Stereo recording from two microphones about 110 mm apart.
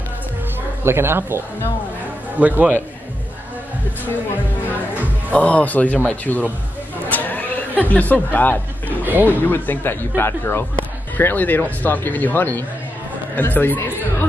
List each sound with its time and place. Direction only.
0.8 s a man's voice: 20° right (ahead or behind)
4.6 s speech: 15° left (ahead or behind)
7.1 s a sound: 15° left (ahead or behind)
7.9 s speech: 15° left (ahead or behind)
9.0 s speech: 15° right (ahead or behind)
9.4 s speech: 20° left (ahead or behind)